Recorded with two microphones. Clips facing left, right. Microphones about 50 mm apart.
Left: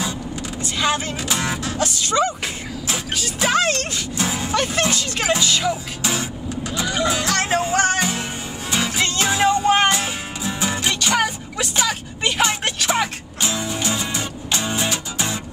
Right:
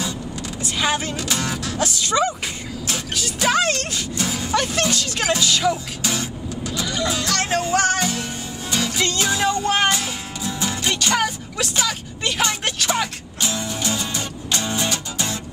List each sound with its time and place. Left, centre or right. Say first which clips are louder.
0.7 s speech: left 1 dB; centre
1.1 s music: left 1 dB; centre
1.8 s speech: even; centre
4.2 s music: left 2 dB; left
4.5 s speech: even; centre
6.1 s music: left 1 dB; left